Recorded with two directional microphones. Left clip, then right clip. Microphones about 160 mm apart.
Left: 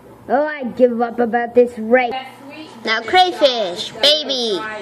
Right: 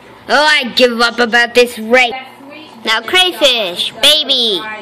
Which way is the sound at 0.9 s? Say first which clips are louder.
Right 6 dB; 15° right (ahead or behind).